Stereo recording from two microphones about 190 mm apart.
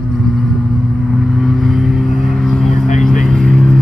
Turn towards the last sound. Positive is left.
turn(degrees=0)  # may be behind; listen again after turning